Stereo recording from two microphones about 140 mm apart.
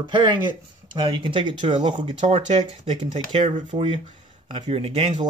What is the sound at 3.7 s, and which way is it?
Speech, 50° right (ahead or behind).